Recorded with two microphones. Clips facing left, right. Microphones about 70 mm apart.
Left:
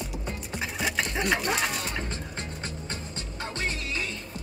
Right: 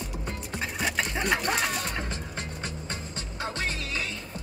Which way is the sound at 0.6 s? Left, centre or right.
Centre.